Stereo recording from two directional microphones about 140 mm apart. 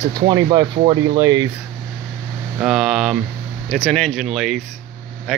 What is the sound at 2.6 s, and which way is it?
Speech, 5° right (ahead or behind).